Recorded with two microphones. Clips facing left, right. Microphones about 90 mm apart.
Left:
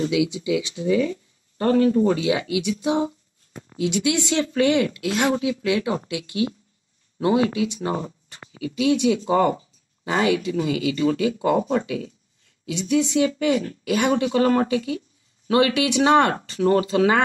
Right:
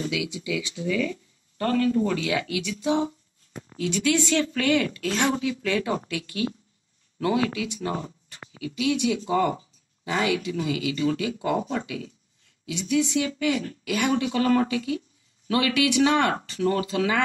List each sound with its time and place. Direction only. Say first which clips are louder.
0.1 s speech: left 7 dB; 25° left (ahead or behind)
4.9 s speech: left 3 dB; 10° left (ahead or behind); by 11.5 s 30° left (ahead or behind)
12.6 s speech: left 3 dB; 30° left (ahead or behind)